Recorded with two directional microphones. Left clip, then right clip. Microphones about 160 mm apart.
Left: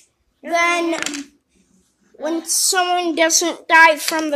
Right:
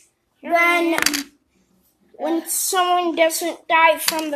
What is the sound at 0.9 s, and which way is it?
Child singing, 50° right (ahead or behind).